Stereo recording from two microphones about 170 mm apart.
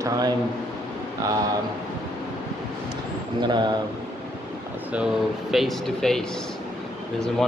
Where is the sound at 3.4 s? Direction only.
25° right (ahead or behind).